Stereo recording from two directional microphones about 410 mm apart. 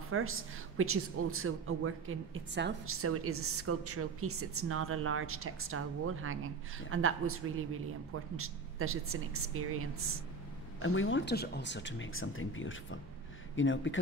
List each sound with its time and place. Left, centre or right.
0.1 s a woman's voice: right
10.8 s speech: left